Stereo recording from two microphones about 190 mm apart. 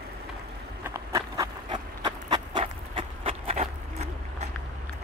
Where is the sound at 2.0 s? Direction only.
25° right (ahead or behind).